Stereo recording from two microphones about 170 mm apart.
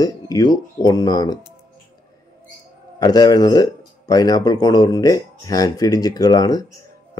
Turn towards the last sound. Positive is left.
turn(degrees=25)  # may be behind; listen again after turning